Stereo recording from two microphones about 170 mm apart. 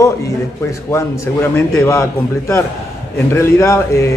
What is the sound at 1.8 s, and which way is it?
Speech, 20° left (ahead or behind).